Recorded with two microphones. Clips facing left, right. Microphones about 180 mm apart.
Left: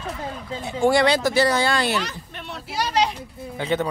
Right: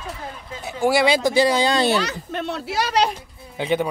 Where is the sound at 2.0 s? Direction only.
80° right.